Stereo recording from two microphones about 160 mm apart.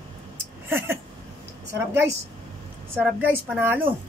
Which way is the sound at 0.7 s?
15° right (ahead or behind).